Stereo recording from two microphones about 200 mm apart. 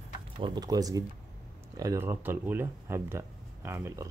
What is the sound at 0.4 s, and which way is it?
Speech, 20° right (ahead or behind).